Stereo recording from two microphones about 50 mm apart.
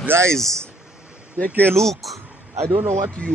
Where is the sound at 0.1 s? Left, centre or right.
Right.